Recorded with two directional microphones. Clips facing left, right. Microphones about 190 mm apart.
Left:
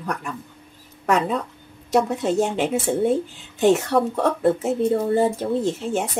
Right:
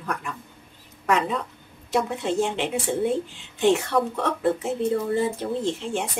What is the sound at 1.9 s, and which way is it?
A woman's voice, 40° left (ahead or behind).